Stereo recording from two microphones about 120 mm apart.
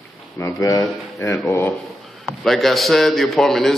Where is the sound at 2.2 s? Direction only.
Centre (ahead or behind).